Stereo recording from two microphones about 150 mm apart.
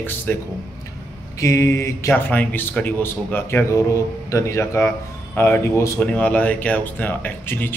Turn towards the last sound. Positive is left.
turn(degrees=15)  # may be behind; listen again after turning